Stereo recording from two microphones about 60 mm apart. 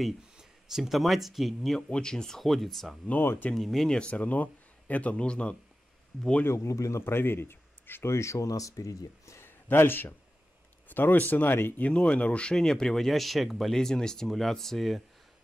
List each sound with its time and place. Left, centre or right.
0.0 s speech: centre
1.9 s speech: centre
3.1 s speech: left
3.5 s speech: centre
3.9 s speech: centre
6.4 s a man's voice: left
9.4 s a sound: left
10.9 s speech: left
11.9 s speech: centre